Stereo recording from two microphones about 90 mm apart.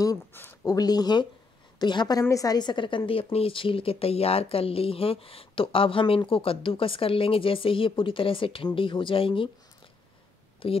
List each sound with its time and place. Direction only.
0.3 s speech: 25° left (ahead or behind)
0.7 s a woman's voice: 45° left (ahead or behind)
2.2 s a woman's voice: 40° left (ahead or behind); by 3.0 s 60° left (ahead or behind)
3.1 s speech: 90° left
10.6 s speech: 90° left